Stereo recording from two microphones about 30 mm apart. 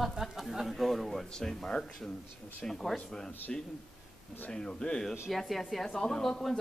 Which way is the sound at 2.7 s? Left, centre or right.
Centre.